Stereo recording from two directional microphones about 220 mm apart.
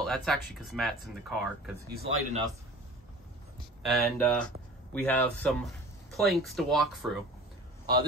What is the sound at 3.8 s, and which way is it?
Speech, centre (ahead or behind).